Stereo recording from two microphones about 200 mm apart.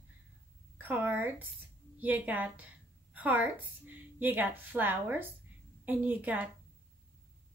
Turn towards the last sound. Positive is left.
turn(degrees=-10)  # may be behind; listen again after turning